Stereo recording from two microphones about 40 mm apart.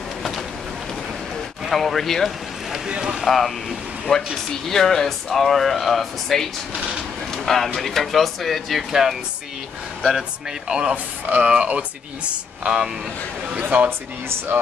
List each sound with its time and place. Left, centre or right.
1.7 s speech: centre
2.9 s speech: right
3.3 s speech: centre
10.7 s speech: centre
11.2 s speech: right
11.5 s speech: right
13.6 s speech: right